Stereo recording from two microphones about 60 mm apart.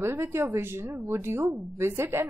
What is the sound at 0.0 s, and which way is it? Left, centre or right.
Speech, right.